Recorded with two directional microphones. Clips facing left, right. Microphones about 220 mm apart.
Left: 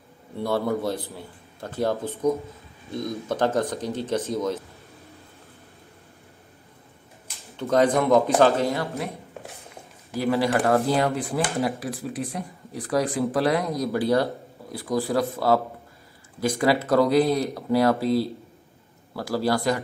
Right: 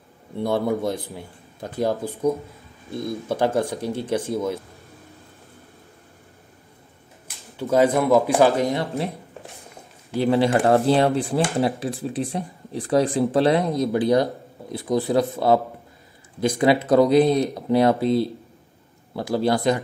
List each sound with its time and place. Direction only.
0.4 s speech: 15° right (ahead or behind)
7.5 s speech: 5° right (ahead or behind)
8.7 s speech: 30° right (ahead or behind)
10.1 s speech: 25° right (ahead or behind)